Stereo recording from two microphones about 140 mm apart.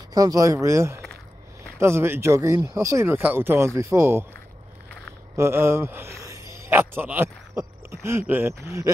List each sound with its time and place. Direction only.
0.1 s speech: 25° right (ahead or behind)
5.3 s a man's voice: 20° right (ahead or behind)